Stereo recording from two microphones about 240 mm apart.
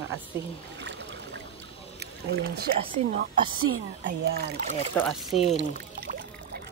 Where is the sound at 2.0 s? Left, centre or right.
Right.